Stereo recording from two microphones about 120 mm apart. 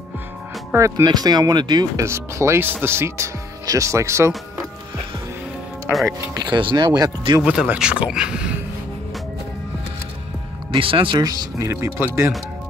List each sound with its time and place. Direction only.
0.7 s speech: 25° right (ahead or behind)
2.0 s speech: 25° right (ahead or behind)
6.0 s speech: 35° right (ahead or behind)
7.4 s speech: 10° right (ahead or behind)
10.7 s speech: 45° right (ahead or behind)
11.1 s speech: 30° right (ahead or behind)